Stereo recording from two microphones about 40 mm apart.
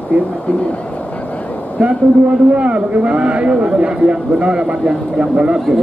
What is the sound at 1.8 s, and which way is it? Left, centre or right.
A man's voice, right.